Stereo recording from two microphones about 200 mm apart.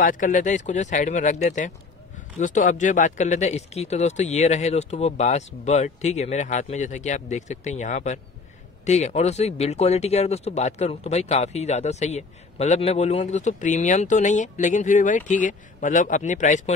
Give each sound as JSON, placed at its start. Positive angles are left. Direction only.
{"t": 0.0, "sound": "speech", "side_deg": 40}